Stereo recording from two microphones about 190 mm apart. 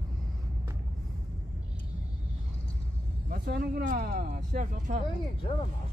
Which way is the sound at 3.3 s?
50° right (ahead or behind).